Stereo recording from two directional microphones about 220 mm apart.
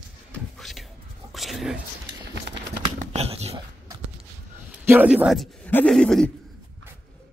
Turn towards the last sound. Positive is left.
turn(degrees=0)  # may be behind; listen again after turning